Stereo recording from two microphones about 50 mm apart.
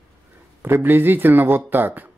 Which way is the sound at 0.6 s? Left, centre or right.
Right.